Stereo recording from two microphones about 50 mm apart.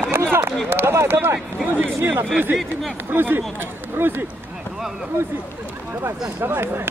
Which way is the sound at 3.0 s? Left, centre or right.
Right.